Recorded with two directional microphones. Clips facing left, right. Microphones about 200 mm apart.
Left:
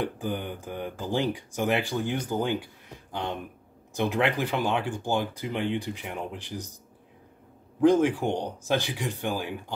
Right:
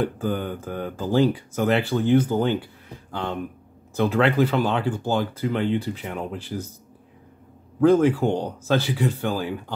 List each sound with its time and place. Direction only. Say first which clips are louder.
0.0 s speech: right 5 dB; 15° left (ahead or behind)
7.8 s speech: right 4 dB; 15° left (ahead or behind)